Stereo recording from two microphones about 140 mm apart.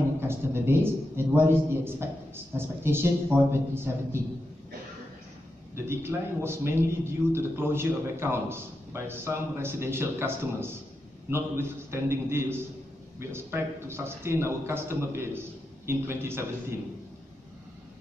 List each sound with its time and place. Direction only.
0.3 s a man's voice: 15° right (ahead or behind)
5.8 s a man's voice: 15° right (ahead or behind)